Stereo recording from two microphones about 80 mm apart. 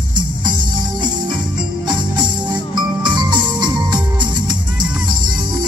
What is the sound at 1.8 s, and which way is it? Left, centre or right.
Music, right.